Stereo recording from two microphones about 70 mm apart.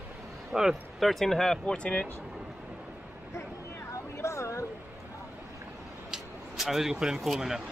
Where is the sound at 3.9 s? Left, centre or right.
Left.